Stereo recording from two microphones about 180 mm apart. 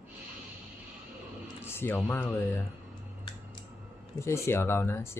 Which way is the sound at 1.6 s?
10° left (ahead or behind).